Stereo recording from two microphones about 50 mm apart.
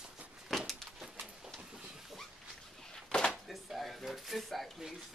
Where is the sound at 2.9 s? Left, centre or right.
Centre.